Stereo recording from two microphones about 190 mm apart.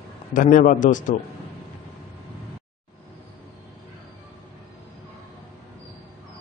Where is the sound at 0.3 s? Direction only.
45° left (ahead or behind).